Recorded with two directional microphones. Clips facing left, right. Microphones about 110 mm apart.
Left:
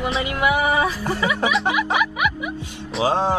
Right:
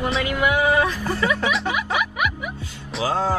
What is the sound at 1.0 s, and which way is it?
Speech, 15° left (ahead or behind).